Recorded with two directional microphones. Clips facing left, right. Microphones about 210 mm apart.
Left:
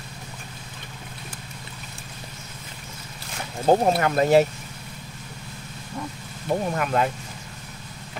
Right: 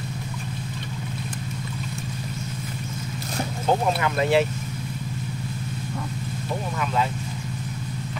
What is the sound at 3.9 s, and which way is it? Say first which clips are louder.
Speech: left 3 dB; 45° left (ahead or behind).